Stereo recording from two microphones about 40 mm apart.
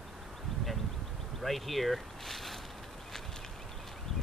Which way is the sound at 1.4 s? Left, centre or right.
Centre.